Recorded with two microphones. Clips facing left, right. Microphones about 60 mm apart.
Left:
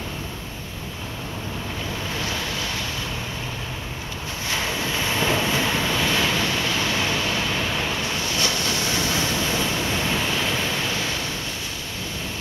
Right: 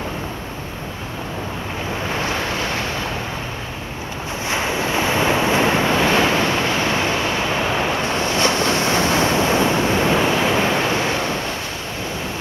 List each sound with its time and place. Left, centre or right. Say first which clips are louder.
2.0 s waves: right 7 dB; right
4.5 s vehicle: right 5 dB; right